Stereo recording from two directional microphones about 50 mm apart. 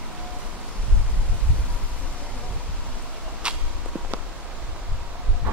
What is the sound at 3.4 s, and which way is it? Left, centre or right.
Walk, centre.